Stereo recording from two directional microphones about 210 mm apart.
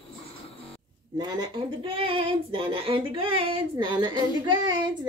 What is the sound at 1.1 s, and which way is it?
Speech, 20° right (ahead or behind).